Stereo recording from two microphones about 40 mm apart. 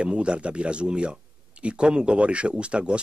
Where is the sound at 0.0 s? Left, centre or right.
Right.